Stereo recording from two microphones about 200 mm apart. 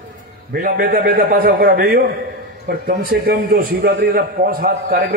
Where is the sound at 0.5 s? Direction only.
45° right (ahead or behind).